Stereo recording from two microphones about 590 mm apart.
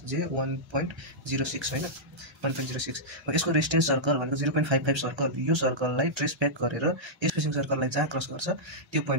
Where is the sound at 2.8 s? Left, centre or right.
Right.